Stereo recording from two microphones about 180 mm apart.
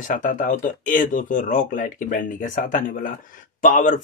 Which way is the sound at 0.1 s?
50° left (ahead or behind).